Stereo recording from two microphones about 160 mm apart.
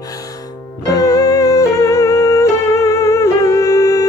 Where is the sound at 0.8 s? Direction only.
20° left (ahead or behind).